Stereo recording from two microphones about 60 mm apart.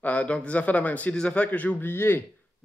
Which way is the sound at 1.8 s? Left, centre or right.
Left.